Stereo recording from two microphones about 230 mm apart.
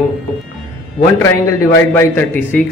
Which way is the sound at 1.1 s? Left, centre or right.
Centre.